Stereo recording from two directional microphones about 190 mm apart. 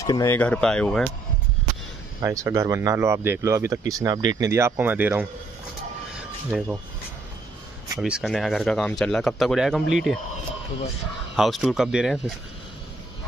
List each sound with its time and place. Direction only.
0.0 s speech: 15° left (ahead or behind)
2.2 s speech: 15° right (ahead or behind)
6.5 s a man's voice: 5° right (ahead or behind)
8.0 s a man's voice: centre (ahead or behind)
11.3 s a man's voice: centre (ahead or behind)